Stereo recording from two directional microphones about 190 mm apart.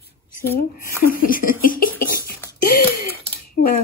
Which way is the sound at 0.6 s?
50° left (ahead or behind).